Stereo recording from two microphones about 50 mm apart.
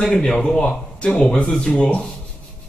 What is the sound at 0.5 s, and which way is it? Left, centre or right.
Speech, left.